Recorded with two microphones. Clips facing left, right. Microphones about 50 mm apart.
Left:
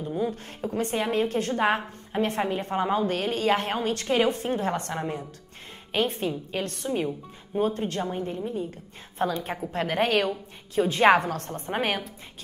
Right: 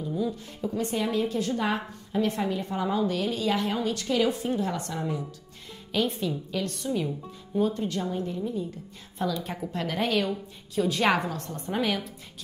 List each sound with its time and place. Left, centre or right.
0.0 s a woman's voice: left